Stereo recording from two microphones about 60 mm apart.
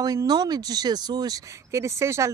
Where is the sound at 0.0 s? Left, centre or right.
Right.